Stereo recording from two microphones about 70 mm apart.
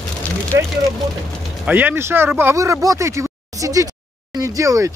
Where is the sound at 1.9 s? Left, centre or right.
Right.